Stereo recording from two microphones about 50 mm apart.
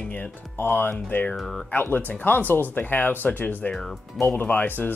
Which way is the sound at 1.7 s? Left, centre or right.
Left.